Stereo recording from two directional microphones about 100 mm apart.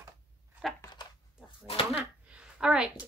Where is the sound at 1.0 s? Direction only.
45° left (ahead or behind).